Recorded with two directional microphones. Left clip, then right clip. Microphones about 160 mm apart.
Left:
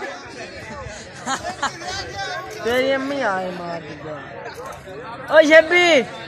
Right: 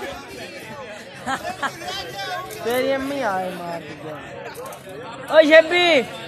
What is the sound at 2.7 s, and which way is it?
Speech, 55° left (ahead or behind).